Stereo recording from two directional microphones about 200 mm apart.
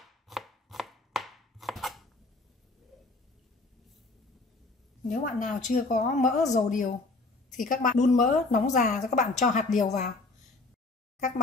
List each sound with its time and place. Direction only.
0.0 s chopping: centre (ahead or behind)
2.9 s a sound: centre (ahead or behind)
5.0 s speech: 40° left (ahead or behind)
11.1 s speech: 40° left (ahead or behind)